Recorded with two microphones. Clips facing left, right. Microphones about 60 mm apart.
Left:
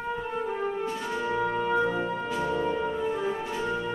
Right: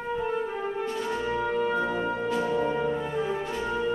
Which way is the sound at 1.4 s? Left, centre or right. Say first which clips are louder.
Left 2 dB; centre.